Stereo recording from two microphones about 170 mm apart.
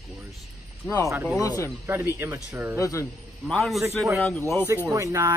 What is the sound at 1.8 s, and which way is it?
Speech, 10° right (ahead or behind).